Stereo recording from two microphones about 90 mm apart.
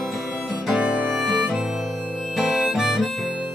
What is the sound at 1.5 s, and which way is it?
Harmonica, 5° right (ahead or behind).